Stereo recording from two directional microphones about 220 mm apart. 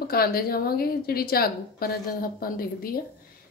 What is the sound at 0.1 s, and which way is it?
A woman's voice, 45° left (ahead or behind).